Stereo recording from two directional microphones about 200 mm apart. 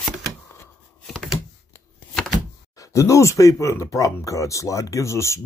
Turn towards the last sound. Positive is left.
turn(degrees=15)  # may be behind; listen again after turning